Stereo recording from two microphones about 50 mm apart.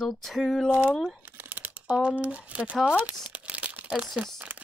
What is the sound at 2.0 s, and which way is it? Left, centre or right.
Speech, right.